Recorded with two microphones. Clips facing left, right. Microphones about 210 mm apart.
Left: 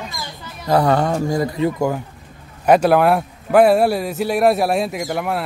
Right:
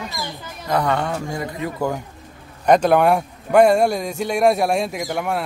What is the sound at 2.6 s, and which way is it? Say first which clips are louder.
A man's voice: left 1 dB; 5° left (ahead or behind).